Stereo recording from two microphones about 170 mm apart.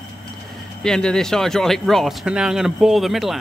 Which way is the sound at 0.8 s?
5° left (ahead or behind).